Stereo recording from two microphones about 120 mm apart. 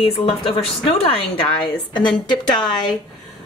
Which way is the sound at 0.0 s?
50° left (ahead or behind).